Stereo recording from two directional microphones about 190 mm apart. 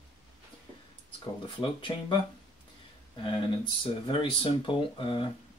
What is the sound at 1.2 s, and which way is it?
Speech, 25° left (ahead or behind).